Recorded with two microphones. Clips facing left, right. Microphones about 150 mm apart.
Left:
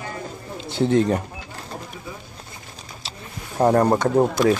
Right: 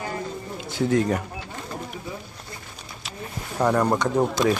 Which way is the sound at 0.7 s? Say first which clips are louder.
Left 3 dB; 25° left (ahead or behind).